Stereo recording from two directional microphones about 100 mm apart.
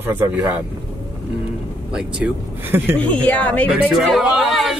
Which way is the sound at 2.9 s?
15° left (ahead or behind).